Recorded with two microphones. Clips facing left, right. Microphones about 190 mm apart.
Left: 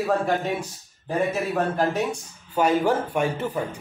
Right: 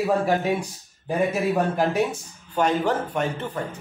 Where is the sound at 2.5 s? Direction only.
10° left (ahead or behind).